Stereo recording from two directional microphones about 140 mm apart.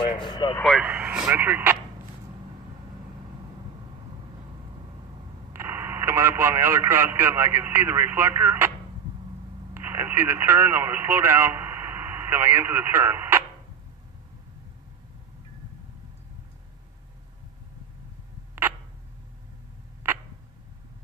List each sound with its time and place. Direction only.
0.2 s speech: 35° left (ahead or behind)
0.6 s speech: centre (ahead or behind)
0.8 s speech: 10° right (ahead or behind)
5.5 s speech: 15° right (ahead or behind)
9.8 s speech: 15° right (ahead or behind)